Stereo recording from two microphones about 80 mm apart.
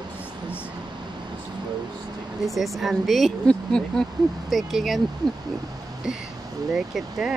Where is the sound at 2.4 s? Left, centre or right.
Centre.